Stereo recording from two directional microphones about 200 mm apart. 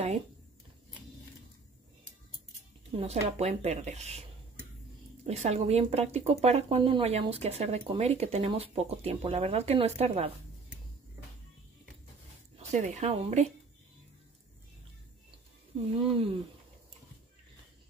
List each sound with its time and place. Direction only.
3.0 s speech: 30° right (ahead or behind)
5.2 s speech: 30° right (ahead or behind)
12.7 s speech: 35° right (ahead or behind)
16.1 s speech: 25° right (ahead or behind)